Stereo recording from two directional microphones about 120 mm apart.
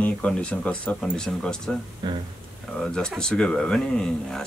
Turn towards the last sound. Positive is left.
turn(degrees=5)  # may be behind; listen again after turning